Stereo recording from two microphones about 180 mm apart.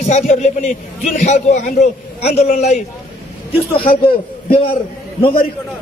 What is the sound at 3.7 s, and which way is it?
Speech, 55° left (ahead or behind).